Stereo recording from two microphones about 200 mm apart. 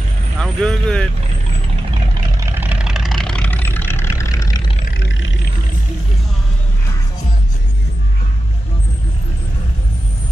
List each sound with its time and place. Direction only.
0.4 s speech: 5° left (ahead or behind)
2.4 s vehicle: 10° right (ahead or behind); by 4.6 s 15° left (ahead or behind)
4.9 s vehicle: 65° left (ahead or behind)